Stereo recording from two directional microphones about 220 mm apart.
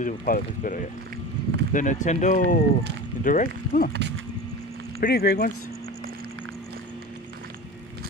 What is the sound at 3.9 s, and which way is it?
Speech, 55° right (ahead or behind).